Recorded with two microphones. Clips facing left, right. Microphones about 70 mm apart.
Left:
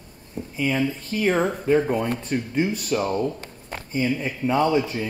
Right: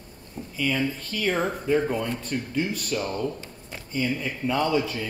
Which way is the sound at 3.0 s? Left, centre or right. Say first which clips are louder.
Left 4 dB; left.